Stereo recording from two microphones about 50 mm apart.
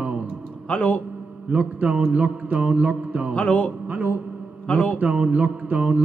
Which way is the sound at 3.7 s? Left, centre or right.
Right.